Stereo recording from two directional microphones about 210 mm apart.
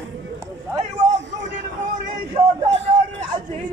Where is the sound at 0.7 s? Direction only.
35° right (ahead or behind).